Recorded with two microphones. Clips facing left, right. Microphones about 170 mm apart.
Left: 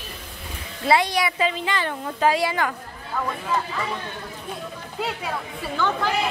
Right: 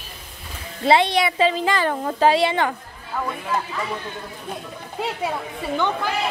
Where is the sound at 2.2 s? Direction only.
25° right (ahead or behind).